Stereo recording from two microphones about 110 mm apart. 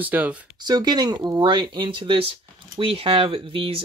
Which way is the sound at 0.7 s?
40° right (ahead or behind).